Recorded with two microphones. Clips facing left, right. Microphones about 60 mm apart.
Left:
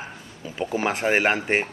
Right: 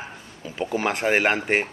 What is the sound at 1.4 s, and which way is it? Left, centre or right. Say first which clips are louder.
Speech: right 1 dB; centre.